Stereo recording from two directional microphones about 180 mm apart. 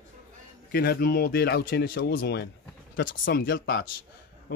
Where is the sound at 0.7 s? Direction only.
60° left (ahead or behind).